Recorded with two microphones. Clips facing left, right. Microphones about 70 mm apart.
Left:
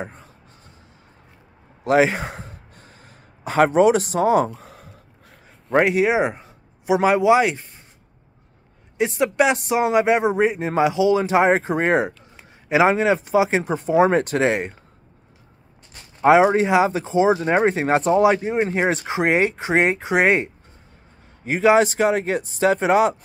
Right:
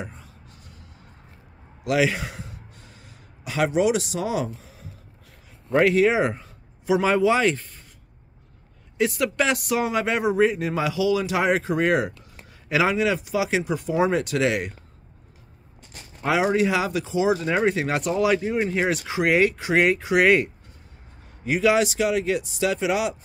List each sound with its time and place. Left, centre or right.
1.9 s gasp: left
3.4 s speech: left
5.7 s speech: left
8.9 s speech: left
16.2 s speech: left